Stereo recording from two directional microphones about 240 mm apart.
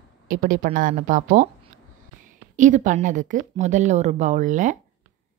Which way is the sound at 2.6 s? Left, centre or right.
Right.